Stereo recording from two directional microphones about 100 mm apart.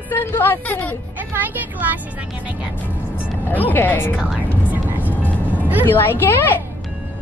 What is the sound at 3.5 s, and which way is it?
Speech, 20° left (ahead or behind).